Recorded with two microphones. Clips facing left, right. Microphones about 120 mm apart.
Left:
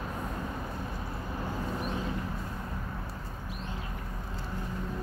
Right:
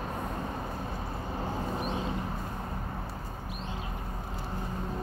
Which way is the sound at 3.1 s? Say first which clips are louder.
Right 2 dB; 40° right (ahead or behind).